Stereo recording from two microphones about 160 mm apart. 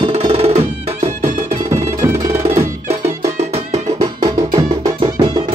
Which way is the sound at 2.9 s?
40° right (ahead or behind).